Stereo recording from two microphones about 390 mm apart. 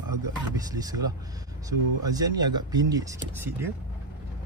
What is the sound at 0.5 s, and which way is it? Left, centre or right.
Speech, centre.